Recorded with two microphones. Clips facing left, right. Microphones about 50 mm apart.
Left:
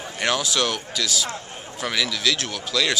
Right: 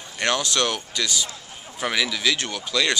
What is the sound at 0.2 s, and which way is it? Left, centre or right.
Speech, centre.